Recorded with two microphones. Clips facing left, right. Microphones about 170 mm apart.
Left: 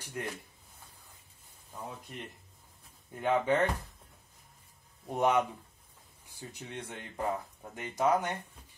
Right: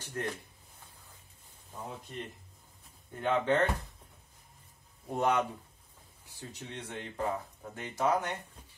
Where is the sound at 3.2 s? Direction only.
10° left (ahead or behind).